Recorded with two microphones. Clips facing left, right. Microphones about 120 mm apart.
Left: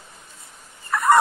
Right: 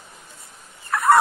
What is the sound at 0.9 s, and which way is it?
Turkey, centre (ahead or behind).